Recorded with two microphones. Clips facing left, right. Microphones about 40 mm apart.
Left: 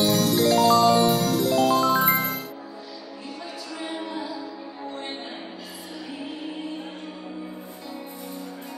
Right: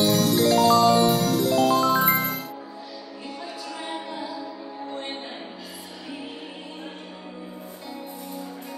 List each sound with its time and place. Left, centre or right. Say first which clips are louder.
0.0 s music: even; centre
3.8 s music: left 2 dB; centre